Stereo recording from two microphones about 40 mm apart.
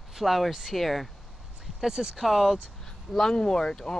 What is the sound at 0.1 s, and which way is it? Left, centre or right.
Speech, centre.